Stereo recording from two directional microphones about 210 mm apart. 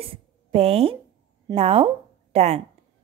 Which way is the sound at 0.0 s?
30° right (ahead or behind).